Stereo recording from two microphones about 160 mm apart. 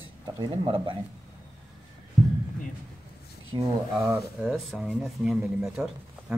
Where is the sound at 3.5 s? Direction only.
25° right (ahead or behind).